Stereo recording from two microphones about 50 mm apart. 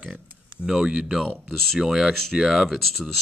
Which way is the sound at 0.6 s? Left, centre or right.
Centre.